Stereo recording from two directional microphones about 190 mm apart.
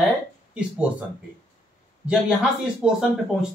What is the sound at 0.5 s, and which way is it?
Speech, 5° right (ahead or behind).